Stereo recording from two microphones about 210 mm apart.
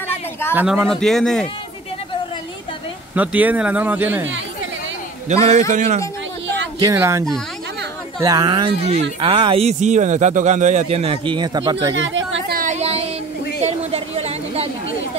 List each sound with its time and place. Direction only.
0.6 s speech: 5° right (ahead or behind)
3.2 s speech: 10° right (ahead or behind)
5.3 s a man's voice: 30° right (ahead or behind)
6.8 s speech: 15° right (ahead or behind)
11.9 s a sound: 60° right (ahead or behind)
12.5 s a sound: 35° right (ahead or behind)